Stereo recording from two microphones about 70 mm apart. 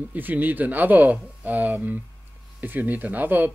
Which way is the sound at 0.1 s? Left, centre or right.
Right.